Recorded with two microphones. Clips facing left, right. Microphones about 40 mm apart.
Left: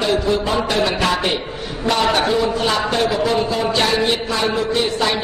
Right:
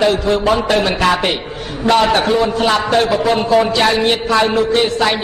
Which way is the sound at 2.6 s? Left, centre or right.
Right.